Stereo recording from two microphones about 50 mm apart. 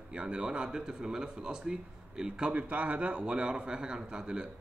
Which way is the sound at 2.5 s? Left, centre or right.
Right.